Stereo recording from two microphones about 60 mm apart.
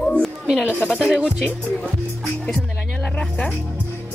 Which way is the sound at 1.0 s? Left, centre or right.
Centre.